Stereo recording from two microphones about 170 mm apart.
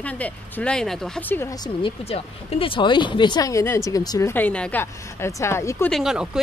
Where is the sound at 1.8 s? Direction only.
30° left (ahead or behind); by 5.9 s 15° left (ahead or behind).